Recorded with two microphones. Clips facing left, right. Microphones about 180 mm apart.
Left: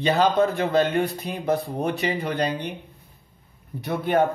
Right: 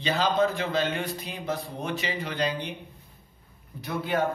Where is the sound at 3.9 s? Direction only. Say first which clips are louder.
Left 6 dB; 60° left (ahead or behind).